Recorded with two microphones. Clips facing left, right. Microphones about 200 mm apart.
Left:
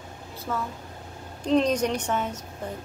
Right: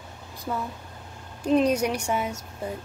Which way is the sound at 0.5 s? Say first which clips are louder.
Even; 15° right (ahead or behind).